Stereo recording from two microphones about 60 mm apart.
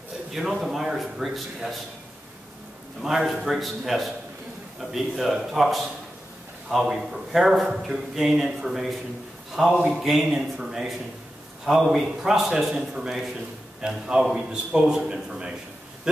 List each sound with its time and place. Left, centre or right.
0.3 s a man's voice: centre
3.0 s a man's voice: centre
11.9 s a man's voice: centre